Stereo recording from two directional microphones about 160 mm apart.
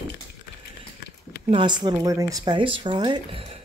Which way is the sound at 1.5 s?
30° right (ahead or behind).